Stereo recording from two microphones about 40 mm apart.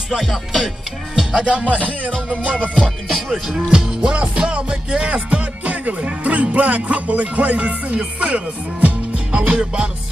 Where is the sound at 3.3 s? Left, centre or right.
Centre; by 8.9 s right.